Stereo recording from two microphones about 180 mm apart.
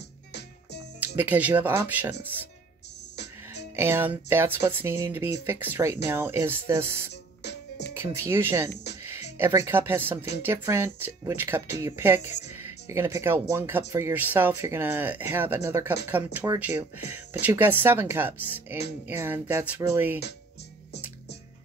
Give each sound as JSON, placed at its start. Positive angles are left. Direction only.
{"t": 0.3, "sound": "music", "side_deg": 70}
{"t": 0.9, "sound": "speech", "side_deg": -10}
{"t": 3.7, "sound": "speech", "side_deg": -10}
{"t": 7.4, "sound": "music", "side_deg": 70}
{"t": 7.9, "sound": "speech", "side_deg": -15}
{"t": 9.7, "sound": "speech", "side_deg": -10}